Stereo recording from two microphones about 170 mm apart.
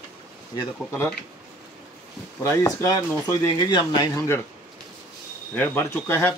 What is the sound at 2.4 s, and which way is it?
Speech, 20° left (ahead or behind).